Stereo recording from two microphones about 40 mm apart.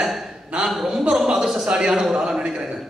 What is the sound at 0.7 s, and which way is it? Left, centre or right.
A man's voice, centre.